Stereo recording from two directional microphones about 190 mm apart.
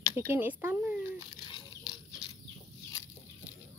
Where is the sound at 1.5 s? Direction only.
20° left (ahead or behind).